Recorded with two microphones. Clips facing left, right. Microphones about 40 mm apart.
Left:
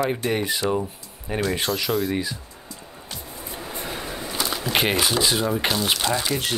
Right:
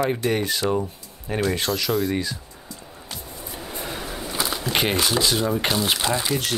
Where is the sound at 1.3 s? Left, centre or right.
Centre.